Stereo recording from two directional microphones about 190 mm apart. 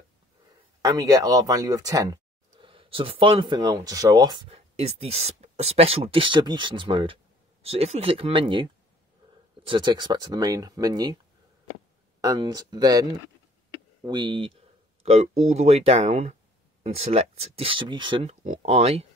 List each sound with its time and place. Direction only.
0.8 s speech: 20° right (ahead or behind)
12.2 s speech: 20° right (ahead or behind)
14.0 s speech: 25° right (ahead or behind)
18.3 s speech: 35° right (ahead or behind)